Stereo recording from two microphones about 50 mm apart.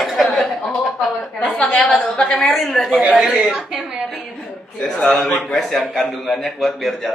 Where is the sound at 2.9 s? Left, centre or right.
Right.